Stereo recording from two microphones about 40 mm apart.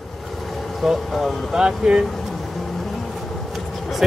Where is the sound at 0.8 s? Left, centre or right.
Centre.